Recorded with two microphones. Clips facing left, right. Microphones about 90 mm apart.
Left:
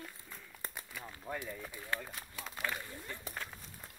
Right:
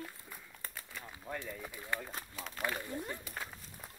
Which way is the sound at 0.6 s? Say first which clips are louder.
Left 2 dB; 20° left (ahead or behind).